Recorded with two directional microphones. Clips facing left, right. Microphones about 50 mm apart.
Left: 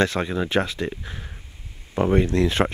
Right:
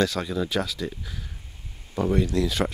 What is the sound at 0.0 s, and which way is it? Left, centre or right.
Speech, left.